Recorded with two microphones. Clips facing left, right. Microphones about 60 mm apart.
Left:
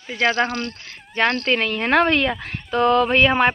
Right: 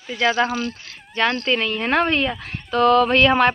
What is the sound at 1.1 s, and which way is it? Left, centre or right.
Speech, left.